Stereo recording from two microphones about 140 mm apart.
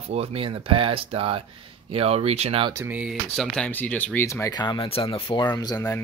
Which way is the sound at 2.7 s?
15° right (ahead or behind).